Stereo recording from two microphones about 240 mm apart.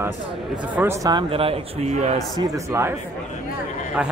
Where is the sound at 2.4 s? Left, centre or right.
Centre.